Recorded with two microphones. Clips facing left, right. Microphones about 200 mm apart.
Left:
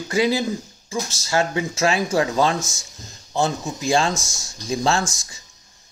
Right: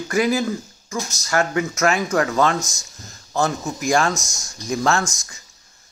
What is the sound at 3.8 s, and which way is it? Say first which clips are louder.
Speech: right 1 dB; 30° left (ahead or behind).